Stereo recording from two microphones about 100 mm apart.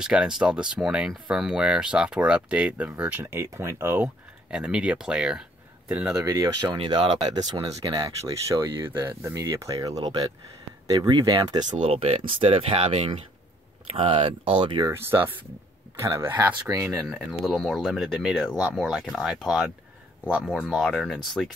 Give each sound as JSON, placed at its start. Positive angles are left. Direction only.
{"t": 0.0, "sound": "speech", "side_deg": -10}
{"t": 4.5, "sound": "speech", "side_deg": -10}
{"t": 6.1, "sound": "speech", "side_deg": -40}
{"t": 11.8, "sound": "speech", "side_deg": -75}
{"t": 14.9, "sound": "speech", "side_deg": -20}
{"t": 16.3, "sound": "speech", "side_deg": -15}
{"t": 17.1, "sound": "speech", "side_deg": 0}